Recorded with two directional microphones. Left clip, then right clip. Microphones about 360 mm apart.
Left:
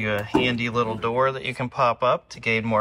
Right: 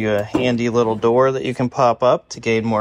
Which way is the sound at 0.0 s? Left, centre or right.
Centre.